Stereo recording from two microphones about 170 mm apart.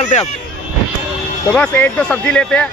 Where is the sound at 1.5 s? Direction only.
5° left (ahead or behind).